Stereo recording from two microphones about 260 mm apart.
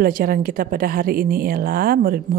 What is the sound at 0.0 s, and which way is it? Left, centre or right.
A woman's voice, right.